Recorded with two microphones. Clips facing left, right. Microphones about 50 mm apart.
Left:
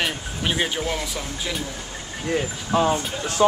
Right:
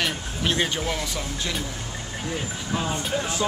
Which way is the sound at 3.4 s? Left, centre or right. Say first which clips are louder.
Left 10 dB; left.